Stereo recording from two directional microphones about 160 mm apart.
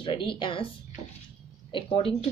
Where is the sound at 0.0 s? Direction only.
30° left (ahead or behind).